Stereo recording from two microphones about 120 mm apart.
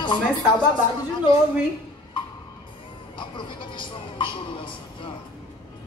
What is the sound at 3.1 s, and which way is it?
Speech, 40° left (ahead or behind).